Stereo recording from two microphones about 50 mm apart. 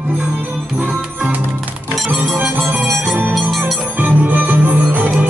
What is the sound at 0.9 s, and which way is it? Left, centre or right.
Music, right.